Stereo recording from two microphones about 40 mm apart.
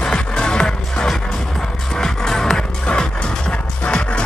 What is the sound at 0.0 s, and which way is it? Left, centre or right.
Music, left.